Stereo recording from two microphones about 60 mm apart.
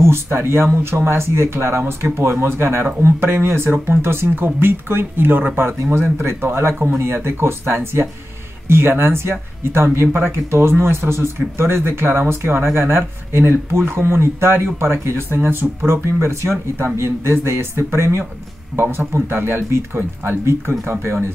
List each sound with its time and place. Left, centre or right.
0.0 s speech: right